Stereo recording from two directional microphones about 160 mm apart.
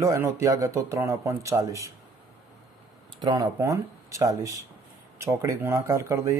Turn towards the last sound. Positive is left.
turn(degrees=-20)  # may be behind; listen again after turning